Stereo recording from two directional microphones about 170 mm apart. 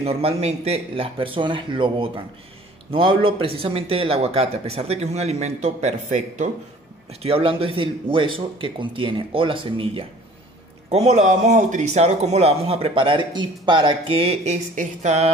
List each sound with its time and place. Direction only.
0.0 s a man's voice: 35° right (ahead or behind)
7.1 s a man's voice: 35° right (ahead or behind)